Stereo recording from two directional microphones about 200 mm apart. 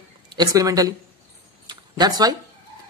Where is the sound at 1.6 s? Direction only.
20° right (ahead or behind).